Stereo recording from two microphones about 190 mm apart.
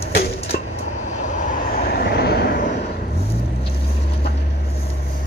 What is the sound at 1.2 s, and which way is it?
Vehicle, 45° left (ahead or behind).